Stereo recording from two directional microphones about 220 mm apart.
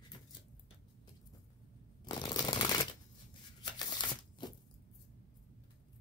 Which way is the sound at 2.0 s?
20° left (ahead or behind).